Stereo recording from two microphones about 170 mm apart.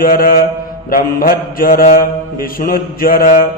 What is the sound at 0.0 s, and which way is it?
Mantra, 55° left (ahead or behind).